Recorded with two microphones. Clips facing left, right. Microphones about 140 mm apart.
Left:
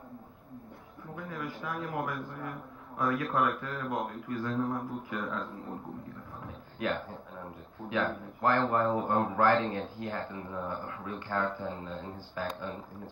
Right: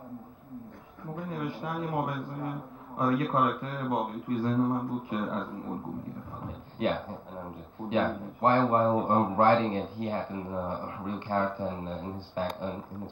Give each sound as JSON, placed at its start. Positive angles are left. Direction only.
{"t": 1.1, "sound": "a man's voice", "side_deg": -25}